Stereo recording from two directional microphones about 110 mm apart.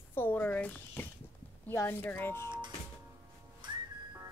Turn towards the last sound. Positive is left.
turn(degrees=-45)  # may be behind; listen again after turning